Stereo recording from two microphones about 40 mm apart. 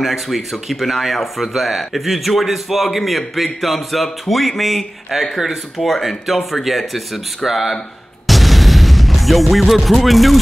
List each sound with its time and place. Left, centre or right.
0.0 s speech: centre
8.3 s music: centre